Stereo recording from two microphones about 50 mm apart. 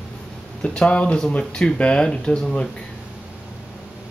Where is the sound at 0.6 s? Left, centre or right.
Centre.